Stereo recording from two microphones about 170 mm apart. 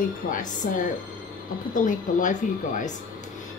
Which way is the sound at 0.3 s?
50° left (ahead or behind).